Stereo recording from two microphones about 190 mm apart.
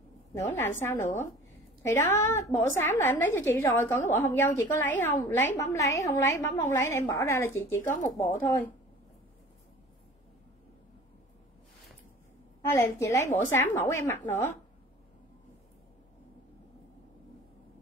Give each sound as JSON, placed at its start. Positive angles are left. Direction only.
{"t": 0.6, "sound": "a woman's voice", "side_deg": 10}
{"t": 12.7, "sound": "a woman's voice", "side_deg": 15}